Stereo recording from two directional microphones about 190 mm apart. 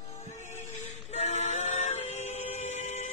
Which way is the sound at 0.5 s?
35° left (ahead or behind).